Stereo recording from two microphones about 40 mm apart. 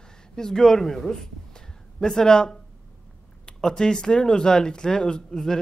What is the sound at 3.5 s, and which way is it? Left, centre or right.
Speech, centre.